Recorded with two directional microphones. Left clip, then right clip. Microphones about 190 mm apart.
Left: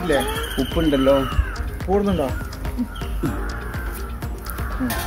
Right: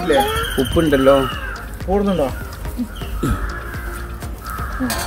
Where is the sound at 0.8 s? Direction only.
40° right (ahead or behind).